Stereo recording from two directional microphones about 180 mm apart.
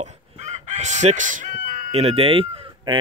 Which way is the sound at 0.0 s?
40° right (ahead or behind).